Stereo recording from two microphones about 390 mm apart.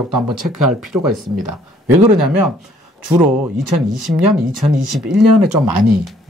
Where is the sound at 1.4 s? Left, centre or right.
Right.